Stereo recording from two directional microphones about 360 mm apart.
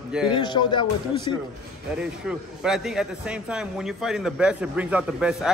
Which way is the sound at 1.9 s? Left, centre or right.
Centre.